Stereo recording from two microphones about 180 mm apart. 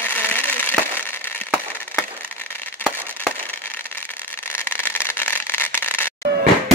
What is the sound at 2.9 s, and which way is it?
Vehicle, 10° left (ahead or behind).